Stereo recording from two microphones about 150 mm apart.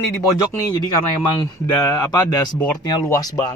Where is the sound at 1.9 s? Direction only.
25° left (ahead or behind).